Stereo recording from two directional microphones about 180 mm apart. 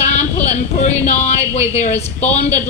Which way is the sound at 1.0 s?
35° left (ahead or behind).